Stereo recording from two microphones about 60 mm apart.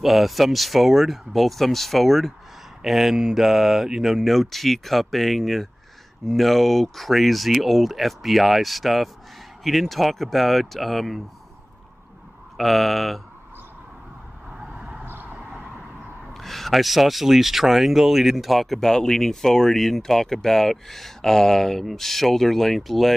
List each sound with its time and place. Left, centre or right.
0.0 s speech: centre
12.5 s speech: centre
14.5 s vehicle: centre
15.0 s vehicle: right
16.3 s speech: centre